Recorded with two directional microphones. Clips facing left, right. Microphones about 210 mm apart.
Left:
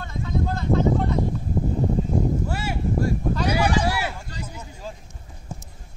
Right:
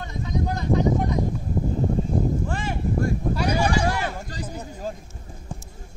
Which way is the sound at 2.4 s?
10° left (ahead or behind).